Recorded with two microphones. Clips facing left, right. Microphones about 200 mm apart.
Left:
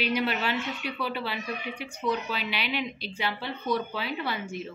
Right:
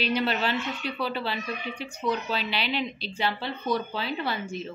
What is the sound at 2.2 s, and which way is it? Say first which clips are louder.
Speech: right 2 dB; 35° right (ahead or behind).